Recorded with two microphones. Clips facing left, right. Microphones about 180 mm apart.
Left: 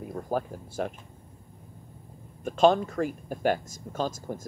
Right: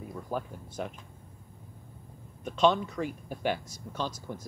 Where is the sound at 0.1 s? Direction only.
55° left (ahead or behind).